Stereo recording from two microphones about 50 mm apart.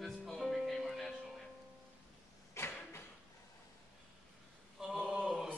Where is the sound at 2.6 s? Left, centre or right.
Left.